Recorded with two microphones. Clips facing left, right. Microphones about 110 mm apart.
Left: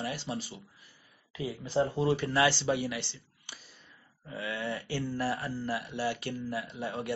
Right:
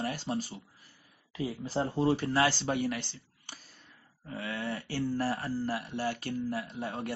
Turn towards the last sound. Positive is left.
turn(degrees=-40)  # may be behind; listen again after turning